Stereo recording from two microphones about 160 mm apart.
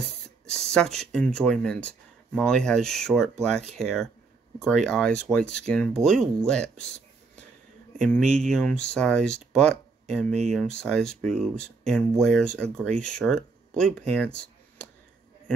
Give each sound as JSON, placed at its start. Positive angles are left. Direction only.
{"t": 0.0, "sound": "speech", "side_deg": 5}
{"t": 8.2, "sound": "speech", "side_deg": -45}
{"t": 8.5, "sound": "speech", "side_deg": 5}